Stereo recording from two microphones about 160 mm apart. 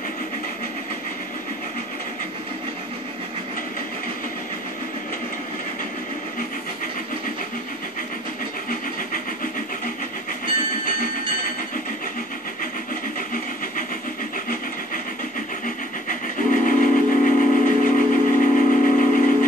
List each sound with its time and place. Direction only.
15.6 s train: 55° left (ahead or behind)